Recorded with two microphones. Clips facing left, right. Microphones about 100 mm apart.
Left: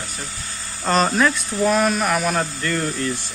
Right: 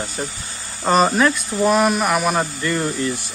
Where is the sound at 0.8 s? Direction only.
5° right (ahead or behind).